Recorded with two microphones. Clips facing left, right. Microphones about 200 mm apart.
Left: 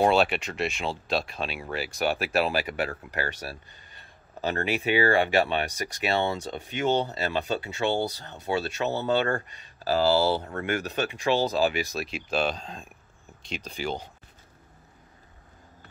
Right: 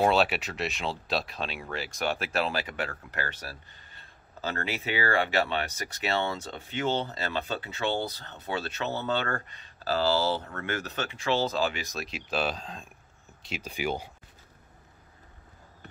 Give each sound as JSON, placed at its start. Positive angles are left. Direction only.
{"t": 0.0, "sound": "speech", "side_deg": 0}